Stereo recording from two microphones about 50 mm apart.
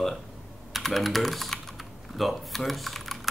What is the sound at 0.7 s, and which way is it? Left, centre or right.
Typing, centre.